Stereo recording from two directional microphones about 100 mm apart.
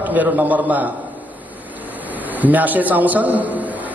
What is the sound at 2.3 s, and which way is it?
A man's voice, 15° right (ahead or behind).